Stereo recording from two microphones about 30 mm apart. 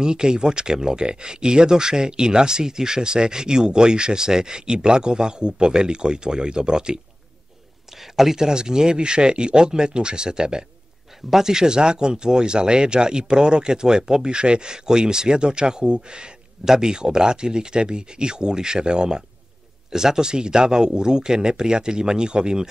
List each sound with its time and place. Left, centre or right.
0.0 s speech: right
8.0 s speech: centre
8.4 s speech: right
11.1 s speech: centre
11.5 s speech: right
16.6 s speech: centre